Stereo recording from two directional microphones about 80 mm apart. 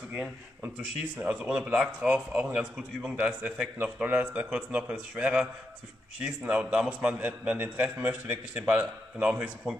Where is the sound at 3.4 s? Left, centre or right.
Centre.